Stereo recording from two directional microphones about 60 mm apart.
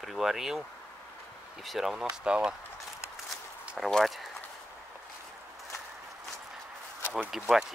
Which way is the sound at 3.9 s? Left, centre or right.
Centre.